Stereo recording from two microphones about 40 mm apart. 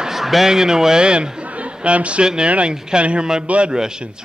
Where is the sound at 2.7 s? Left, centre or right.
Centre.